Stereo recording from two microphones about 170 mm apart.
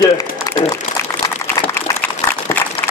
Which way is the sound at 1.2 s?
15° left (ahead or behind).